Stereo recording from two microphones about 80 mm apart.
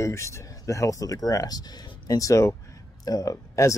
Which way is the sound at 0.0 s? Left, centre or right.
Left.